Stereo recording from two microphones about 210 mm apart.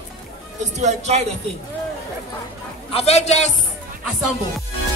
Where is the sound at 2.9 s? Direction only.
30° left (ahead or behind).